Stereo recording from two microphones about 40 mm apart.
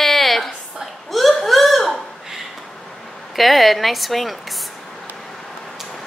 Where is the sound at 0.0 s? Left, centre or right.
Centre.